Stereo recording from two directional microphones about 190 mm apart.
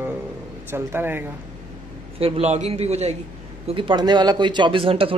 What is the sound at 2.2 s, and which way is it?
A man's voice, 30° right (ahead or behind).